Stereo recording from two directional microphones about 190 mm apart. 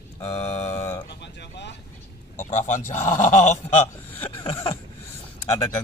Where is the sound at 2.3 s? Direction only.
40° left (ahead or behind).